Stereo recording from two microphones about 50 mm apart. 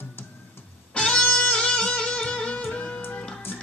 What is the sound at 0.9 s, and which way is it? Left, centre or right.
Music, centre.